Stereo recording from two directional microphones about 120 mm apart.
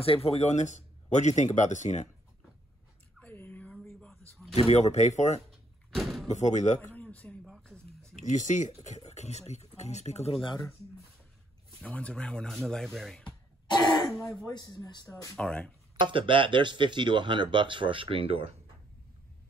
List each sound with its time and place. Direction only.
0.0 s speech: 55° left (ahead or behind); by 2.0 s 75° left (ahead or behind)
3.2 s a sound: 15° left (ahead or behind)
4.6 s speech: 70° left (ahead or behind)
5.9 s door: centre (ahead or behind)
6.2 s speech: 75° left (ahead or behind)
6.8 s a sound: 10° left (ahead or behind)
8.2 s speech: 90° left
8.8 s speech: 70° left (ahead or behind); by 10.6 s 50° left (ahead or behind)
11.8 s speech: 10° left (ahead or behind)
13.7 s speech: 40° left (ahead or behind)
15.3 s speech: 10° left (ahead or behind)
16.0 s speech: 45° right (ahead or behind)